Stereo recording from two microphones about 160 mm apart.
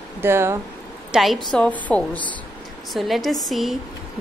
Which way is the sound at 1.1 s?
Centre (ahead or behind).